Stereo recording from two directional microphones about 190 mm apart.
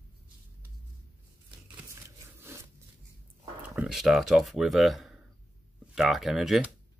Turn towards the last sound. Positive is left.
turn(degrees=0)  # may be behind; listen again after turning